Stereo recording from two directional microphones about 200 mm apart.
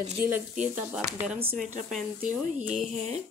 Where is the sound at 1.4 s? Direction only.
45° right (ahead or behind).